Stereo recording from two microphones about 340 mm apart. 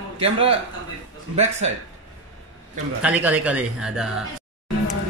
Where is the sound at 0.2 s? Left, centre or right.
Centre.